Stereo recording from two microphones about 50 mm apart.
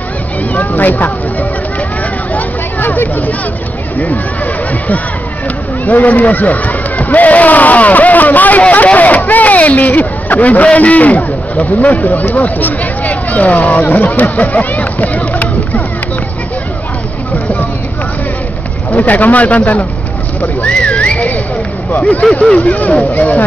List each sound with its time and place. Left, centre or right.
0.5 s speech: left
2.3 s a sound: left
5.9 s speech: left
18.9 s speech: left
22.5 s speech: left